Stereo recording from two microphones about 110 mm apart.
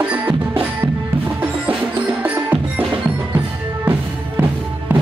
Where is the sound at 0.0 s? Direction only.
15° right (ahead or behind).